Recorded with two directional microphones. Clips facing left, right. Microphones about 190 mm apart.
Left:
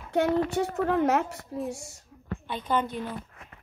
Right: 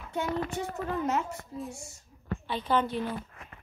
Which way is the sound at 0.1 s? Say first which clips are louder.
Left 7 dB; 75° left (ahead or behind).